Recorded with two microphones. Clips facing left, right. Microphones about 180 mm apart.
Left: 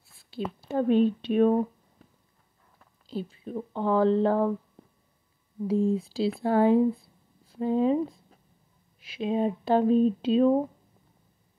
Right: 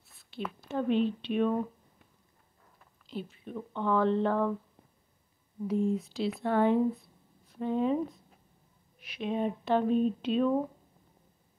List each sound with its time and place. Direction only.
0.1 s a sound: 30° left (ahead or behind)
0.6 s speech: 40° left (ahead or behind)
3.1 s speech: 35° left (ahead or behind)
5.7 s speech: 30° left (ahead or behind)